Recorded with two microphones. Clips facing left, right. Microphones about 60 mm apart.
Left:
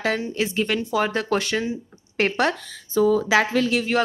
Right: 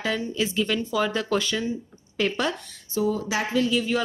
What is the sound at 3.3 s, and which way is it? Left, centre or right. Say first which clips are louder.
Speech: left 4 dB; left.